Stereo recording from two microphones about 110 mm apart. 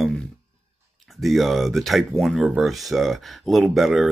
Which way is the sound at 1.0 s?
Centre (ahead or behind).